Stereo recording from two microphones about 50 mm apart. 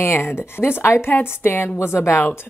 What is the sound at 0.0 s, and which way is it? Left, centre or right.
Speech, left.